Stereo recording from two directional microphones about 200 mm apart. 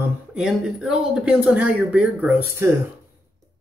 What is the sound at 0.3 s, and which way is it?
Speech, 5° right (ahead or behind).